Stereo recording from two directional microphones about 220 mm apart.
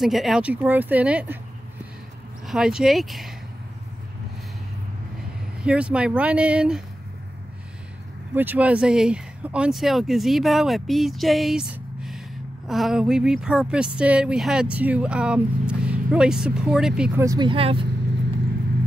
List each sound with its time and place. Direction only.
0.0 s speech: centre (ahead or behind)
2.4 s speech: centre (ahead or behind)
5.6 s speech: 5° right (ahead or behind)
8.4 s speech: 5° right (ahead or behind)
17.3 s speech: 20° right (ahead or behind)